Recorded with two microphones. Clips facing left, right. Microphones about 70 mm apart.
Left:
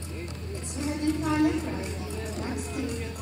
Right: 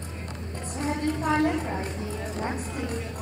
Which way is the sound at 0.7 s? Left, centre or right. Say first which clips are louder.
Even; right.